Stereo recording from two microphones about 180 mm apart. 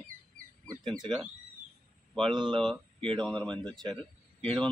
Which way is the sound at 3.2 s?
5° left (ahead or behind).